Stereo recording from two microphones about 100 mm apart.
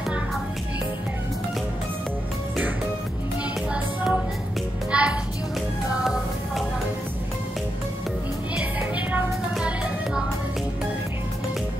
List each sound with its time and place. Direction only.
3.7 s music: 10° right (ahead or behind)
8.5 s music: 15° right (ahead or behind)